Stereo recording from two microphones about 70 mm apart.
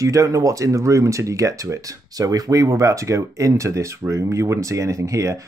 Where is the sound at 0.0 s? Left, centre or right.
Right.